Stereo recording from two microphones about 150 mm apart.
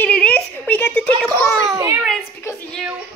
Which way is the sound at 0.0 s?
10° left (ahead or behind).